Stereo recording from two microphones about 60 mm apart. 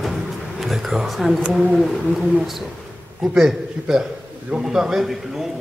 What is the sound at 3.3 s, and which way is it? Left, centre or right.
A man's voice, centre.